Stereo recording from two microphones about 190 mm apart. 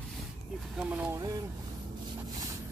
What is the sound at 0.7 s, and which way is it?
Speech, 10° right (ahead or behind).